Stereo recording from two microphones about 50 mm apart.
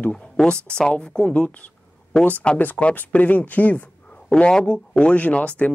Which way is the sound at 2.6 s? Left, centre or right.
Left.